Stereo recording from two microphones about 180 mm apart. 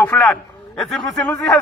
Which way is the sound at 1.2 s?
20° left (ahead or behind).